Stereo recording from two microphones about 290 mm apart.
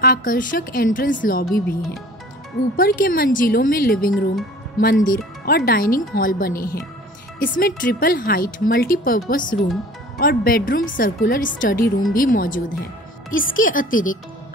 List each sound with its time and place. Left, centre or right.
0.0 s speech: left